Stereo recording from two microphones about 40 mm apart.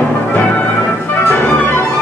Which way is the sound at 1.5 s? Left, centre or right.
Left.